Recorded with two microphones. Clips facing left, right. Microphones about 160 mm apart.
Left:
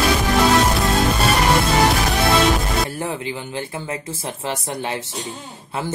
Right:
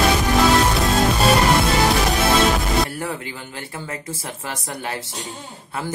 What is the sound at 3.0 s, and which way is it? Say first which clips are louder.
Speech: left 3 dB; 20° left (ahead or behind).